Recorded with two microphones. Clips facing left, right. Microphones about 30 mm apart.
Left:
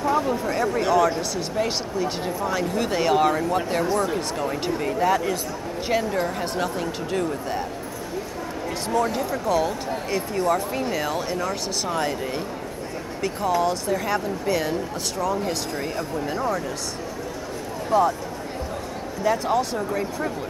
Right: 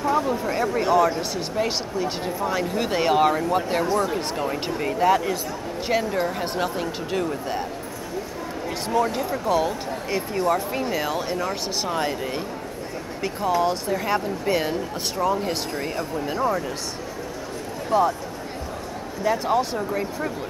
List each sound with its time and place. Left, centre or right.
0.0 s speech: centre
6.4 s speech: centre
9.0 s speech: centre
13.4 s speech: centre
15.4 s speech: centre
17.8 s speech: centre
19.2 s speech: centre